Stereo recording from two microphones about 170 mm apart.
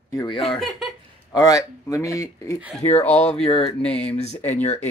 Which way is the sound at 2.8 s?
40° left (ahead or behind).